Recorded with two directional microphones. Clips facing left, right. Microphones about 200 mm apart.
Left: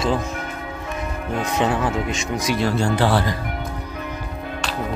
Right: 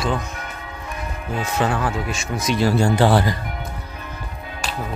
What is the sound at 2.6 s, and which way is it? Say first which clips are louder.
Speech: right 4 dB; 10° right (ahead or behind).